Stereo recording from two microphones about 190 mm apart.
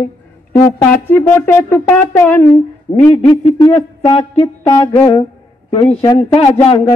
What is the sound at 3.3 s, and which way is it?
Speech, 25° left (ahead or behind).